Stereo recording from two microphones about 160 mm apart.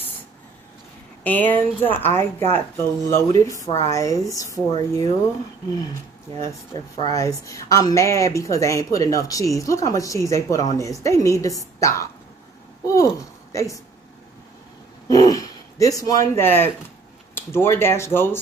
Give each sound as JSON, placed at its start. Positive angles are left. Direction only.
{"t": 1.2, "sound": "speech", "side_deg": 10}
{"t": 6.4, "sound": "speech", "side_deg": 25}
{"t": 15.0, "sound": "speech", "side_deg": 20}